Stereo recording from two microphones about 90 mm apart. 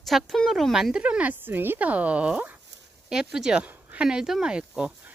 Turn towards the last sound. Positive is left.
turn(degrees=-10)  # may be behind; listen again after turning